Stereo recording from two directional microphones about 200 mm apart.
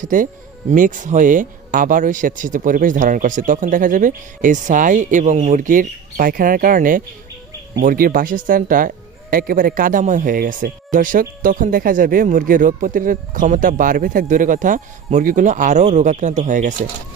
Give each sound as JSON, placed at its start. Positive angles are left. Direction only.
{"t": 0.0, "sound": "speech", "side_deg": -40}